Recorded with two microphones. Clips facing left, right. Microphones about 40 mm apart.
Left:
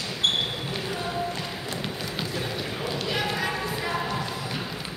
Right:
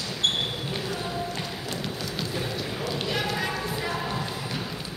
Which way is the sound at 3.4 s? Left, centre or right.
Centre.